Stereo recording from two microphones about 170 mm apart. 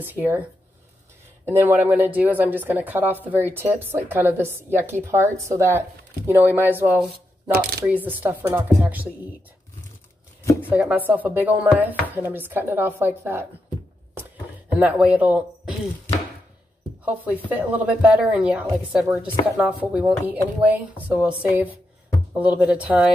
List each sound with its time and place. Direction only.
0.0 s speech: 10° right (ahead or behind)
10.7 s speech: 10° right (ahead or behind)
14.7 s speech: 10° right (ahead or behind)
17.0 s speech: 10° right (ahead or behind)